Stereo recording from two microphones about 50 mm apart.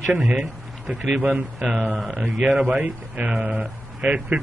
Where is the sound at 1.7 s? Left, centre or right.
Centre.